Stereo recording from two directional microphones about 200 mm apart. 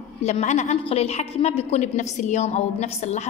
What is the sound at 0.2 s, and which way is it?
A woman's voice, 35° left (ahead or behind).